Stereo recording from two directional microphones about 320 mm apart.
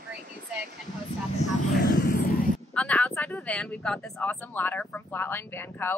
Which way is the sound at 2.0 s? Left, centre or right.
Left.